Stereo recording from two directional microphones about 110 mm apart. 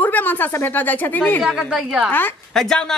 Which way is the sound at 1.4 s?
5° right (ahead or behind).